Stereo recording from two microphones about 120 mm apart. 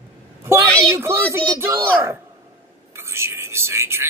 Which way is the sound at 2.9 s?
20° right (ahead or behind).